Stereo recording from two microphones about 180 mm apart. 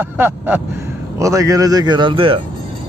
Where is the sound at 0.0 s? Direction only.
10° right (ahead or behind).